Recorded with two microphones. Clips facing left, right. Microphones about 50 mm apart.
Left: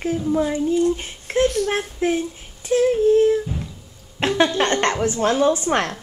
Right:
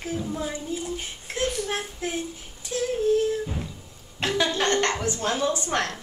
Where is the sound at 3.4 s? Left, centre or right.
Centre.